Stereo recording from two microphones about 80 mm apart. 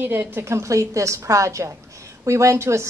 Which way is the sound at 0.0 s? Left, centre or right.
Right.